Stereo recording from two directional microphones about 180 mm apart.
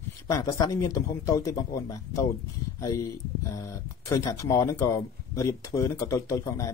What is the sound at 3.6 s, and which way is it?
Speech, 15° left (ahead or behind).